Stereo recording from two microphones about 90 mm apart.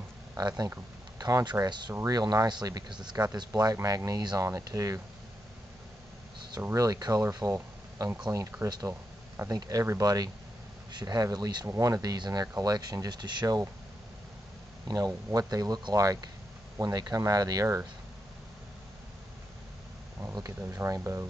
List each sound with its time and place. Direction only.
0.4 s speech: 50° right (ahead or behind)
6.7 s speech: 40° right (ahead or behind)
11.6 s speech: 35° right (ahead or behind)
14.9 s speech: 45° right (ahead or behind)
21.0 s speech: 25° right (ahead or behind)